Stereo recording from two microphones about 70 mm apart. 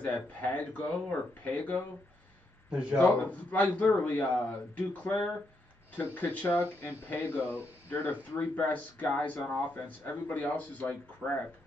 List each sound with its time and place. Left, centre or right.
0.0 s speech: left
2.7 s speech: centre
3.0 s speech: left
5.9 s speech: left